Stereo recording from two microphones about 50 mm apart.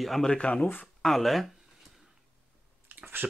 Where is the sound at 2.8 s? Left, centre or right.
Right.